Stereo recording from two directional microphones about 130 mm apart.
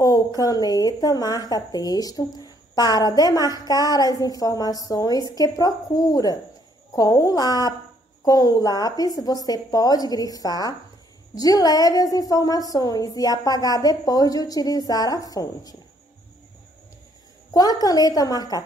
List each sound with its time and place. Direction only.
0.4 s a woman's voice: 30° left (ahead or behind)
17.6 s a woman's voice: 30° left (ahead or behind)